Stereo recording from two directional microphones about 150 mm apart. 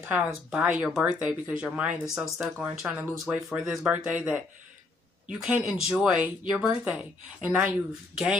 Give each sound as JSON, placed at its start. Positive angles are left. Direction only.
{"t": 0.1, "sound": "speech", "side_deg": -10}